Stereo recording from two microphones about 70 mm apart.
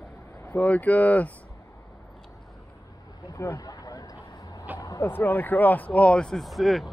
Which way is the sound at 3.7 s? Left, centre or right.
Left.